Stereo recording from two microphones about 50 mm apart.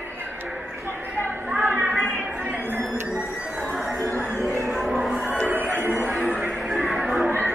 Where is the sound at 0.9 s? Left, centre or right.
Right.